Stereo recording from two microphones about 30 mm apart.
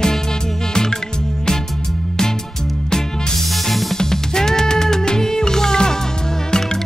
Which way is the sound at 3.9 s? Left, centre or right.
Centre.